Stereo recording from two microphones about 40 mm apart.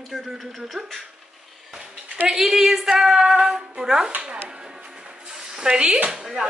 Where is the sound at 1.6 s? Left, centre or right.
Centre.